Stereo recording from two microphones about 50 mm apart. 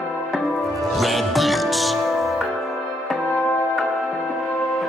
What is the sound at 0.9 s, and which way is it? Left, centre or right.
Music, centre.